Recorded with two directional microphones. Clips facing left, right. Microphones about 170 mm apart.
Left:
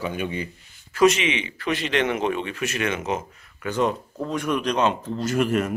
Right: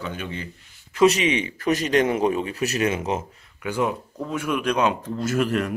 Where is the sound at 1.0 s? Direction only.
40° right (ahead or behind).